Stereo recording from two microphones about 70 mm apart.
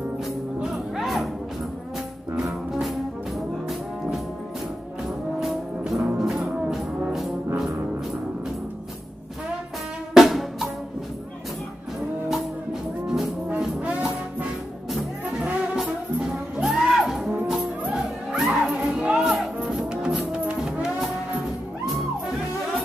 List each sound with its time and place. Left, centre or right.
0.6 s music: centre
2.4 s music: centre
6.1 s brass instrument: centre
10.1 s drum: centre
13.0 s music: centre
13.6 s brass instrument: centre
15.3 s brass instrument: centre
16.2 s music: centre